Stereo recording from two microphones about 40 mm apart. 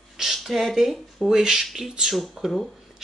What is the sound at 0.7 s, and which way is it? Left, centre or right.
Speech, centre.